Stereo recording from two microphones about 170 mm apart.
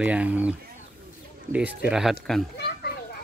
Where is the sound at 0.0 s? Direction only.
10° right (ahead or behind).